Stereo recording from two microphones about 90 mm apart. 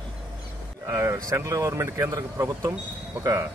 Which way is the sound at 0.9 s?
30° right (ahead or behind).